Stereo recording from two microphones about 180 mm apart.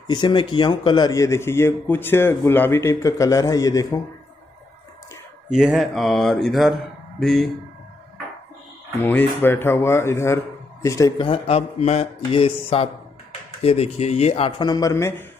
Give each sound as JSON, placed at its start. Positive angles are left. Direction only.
{"t": 0.0, "sound": "speech", "side_deg": 25}
{"t": 5.6, "sound": "speech", "side_deg": 0}
{"t": 8.9, "sound": "speech", "side_deg": 10}